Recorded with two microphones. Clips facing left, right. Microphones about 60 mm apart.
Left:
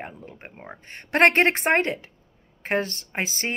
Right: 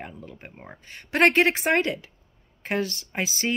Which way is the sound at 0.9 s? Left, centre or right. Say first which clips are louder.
Left 2 dB; left.